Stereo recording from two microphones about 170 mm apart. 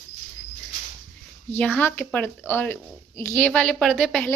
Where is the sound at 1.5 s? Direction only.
10° left (ahead or behind).